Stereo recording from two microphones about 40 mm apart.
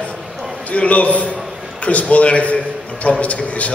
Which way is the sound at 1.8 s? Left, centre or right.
Left.